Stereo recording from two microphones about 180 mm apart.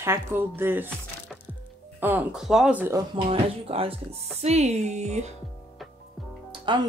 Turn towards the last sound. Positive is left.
turn(degrees=-25)  # may be behind; listen again after turning